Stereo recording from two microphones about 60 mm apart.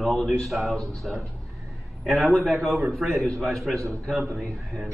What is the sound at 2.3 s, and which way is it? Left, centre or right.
A man's voice, centre.